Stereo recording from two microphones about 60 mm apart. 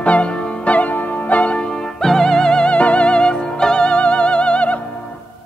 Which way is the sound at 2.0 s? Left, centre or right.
Centre.